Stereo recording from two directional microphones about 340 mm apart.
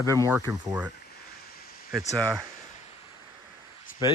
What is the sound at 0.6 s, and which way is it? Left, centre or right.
Speech, centre.